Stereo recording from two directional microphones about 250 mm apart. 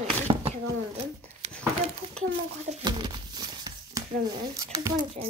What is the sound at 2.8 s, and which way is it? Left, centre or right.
Speech, centre.